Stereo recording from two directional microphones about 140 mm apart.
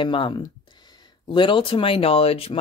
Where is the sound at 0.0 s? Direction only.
35° left (ahead or behind).